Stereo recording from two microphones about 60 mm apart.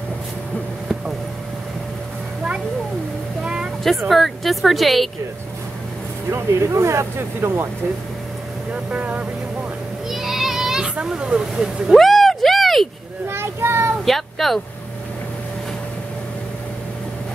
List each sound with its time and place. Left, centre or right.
3.4 s a sound: centre
4.1 s a woman's voice: centre
6.3 s speech: right
8.9 s speech: right
10.0 s child singing: centre
11.0 s speech: centre
13.3 s child singing: right
14.0 s speech: centre